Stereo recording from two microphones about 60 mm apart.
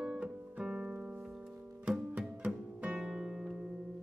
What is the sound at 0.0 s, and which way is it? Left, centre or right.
Music, centre.